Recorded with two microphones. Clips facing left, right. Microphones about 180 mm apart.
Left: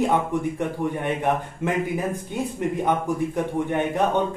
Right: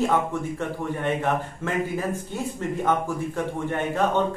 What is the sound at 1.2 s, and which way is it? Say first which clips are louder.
Speech: left 2 dB; 15° left (ahead or behind).